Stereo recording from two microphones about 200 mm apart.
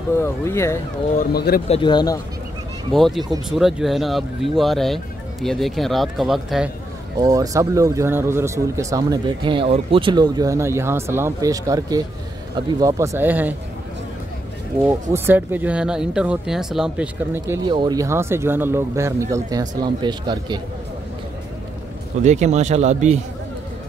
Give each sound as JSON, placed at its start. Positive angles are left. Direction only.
{"t": 0.1, "sound": "speech", "side_deg": 15}
{"t": 1.1, "sound": "speech", "side_deg": 45}
{"t": 1.7, "sound": "speech", "side_deg": 25}
{"t": 2.9, "sound": "speech", "side_deg": 0}
{"t": 7.2, "sound": "speech", "side_deg": -20}
{"t": 14.9, "sound": "speech", "side_deg": -10}
{"t": 17.6, "sound": "speech", "side_deg": -20}
{"t": 22.2, "sound": "speech", "side_deg": -35}